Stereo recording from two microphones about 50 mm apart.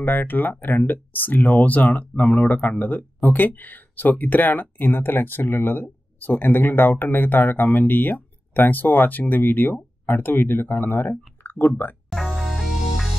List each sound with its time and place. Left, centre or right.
0.0 s speech: left
12.3 s music: centre